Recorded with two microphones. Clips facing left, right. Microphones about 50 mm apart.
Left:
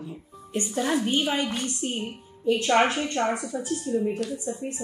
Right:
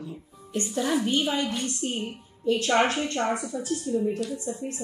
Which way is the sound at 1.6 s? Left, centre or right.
Left.